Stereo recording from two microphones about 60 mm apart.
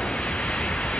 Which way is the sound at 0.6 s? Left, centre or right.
Centre.